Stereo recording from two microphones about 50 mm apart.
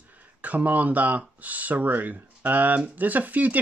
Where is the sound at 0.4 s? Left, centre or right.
Right.